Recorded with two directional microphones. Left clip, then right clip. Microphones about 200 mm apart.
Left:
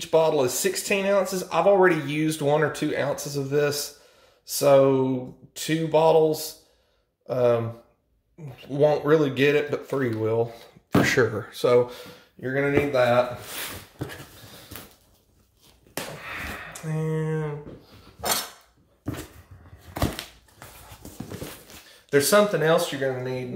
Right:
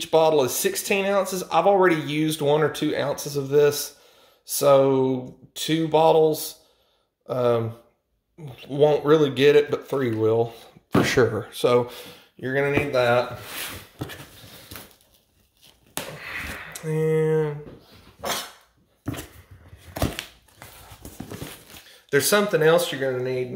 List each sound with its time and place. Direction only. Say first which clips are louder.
0.0 s speech: right 2 dB; 30° right (ahead or behind); by 13.2 s 50° right (ahead or behind)
16.7 s speech: right 10 dB; 50° right (ahead or behind)
22.1 s speech: left 1 dB; 40° right (ahead or behind)